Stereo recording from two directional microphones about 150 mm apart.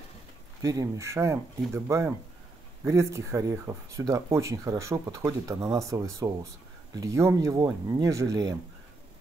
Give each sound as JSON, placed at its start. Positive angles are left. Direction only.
{"t": 0.6, "sound": "speech", "side_deg": -20}